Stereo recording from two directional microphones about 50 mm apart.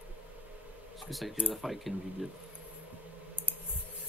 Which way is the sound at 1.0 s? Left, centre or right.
Centre.